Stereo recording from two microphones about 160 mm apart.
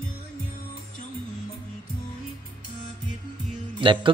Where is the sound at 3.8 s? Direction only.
30° right (ahead or behind).